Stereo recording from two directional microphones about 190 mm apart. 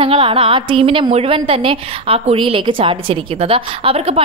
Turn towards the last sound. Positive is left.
turn(degrees=-30)  # may be behind; listen again after turning